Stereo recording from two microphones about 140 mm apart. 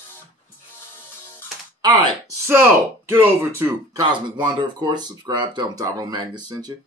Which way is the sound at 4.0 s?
35° right (ahead or behind).